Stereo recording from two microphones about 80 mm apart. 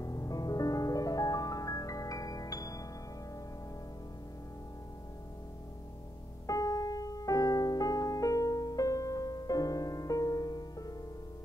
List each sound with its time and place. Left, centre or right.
0.0 s music: left
6.4 s music: left